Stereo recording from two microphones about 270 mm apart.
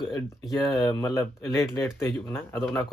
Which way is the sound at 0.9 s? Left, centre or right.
Centre.